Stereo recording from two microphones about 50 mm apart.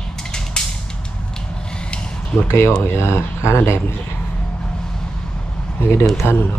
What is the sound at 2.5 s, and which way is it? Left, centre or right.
Speech, left.